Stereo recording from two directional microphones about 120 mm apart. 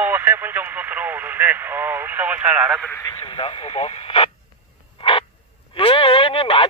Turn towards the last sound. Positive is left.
turn(degrees=50)  # may be behind; listen again after turning